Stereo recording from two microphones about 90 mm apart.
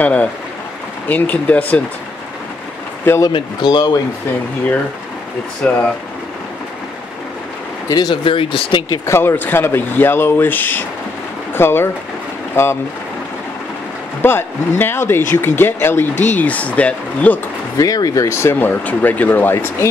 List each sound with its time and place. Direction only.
0.0 s speech: 15° left (ahead or behind)
3.3 s speech: 60° left (ahead or behind)
5.6 s speech: 15° left (ahead or behind)
7.9 s speech: 50° left (ahead or behind)
8.2 s speech: 65° left (ahead or behind)
8.9 s speech: 30° left (ahead or behind)
14.2 s speech: 25° left (ahead or behind)
17.7 s speech: 40° left (ahead or behind); by 19.9 s 25° left (ahead or behind)